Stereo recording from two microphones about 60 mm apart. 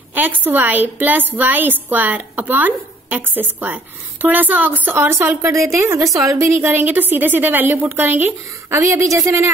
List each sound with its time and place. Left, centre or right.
0.1 s a woman's voice: right
5.5 s a woman's voice: right
6.1 s a woman's voice: right
6.6 s a woman's voice: right
8.6 s a woman's voice: right